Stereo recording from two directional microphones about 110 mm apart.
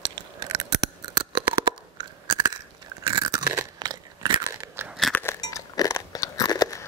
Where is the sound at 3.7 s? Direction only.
40° right (ahead or behind).